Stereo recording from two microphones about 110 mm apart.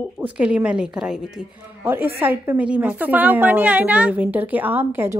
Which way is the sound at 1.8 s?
20° right (ahead or behind).